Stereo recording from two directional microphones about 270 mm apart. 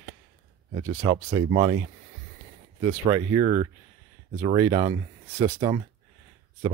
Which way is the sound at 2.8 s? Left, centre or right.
Centre.